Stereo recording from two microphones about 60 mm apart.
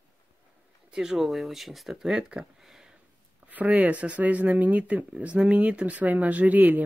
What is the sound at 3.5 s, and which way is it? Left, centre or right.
Speech, right.